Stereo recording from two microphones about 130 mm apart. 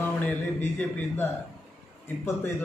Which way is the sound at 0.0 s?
10° left (ahead or behind).